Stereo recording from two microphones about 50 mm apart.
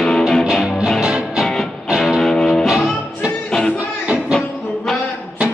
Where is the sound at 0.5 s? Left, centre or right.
Centre.